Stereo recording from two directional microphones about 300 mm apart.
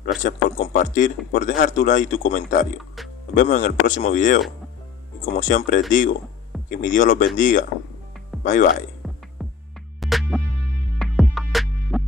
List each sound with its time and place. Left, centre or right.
0.0 s a man's voice: left
9.0 s music: centre